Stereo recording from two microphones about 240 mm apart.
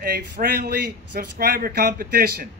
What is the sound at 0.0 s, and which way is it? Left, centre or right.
A man's voice, right.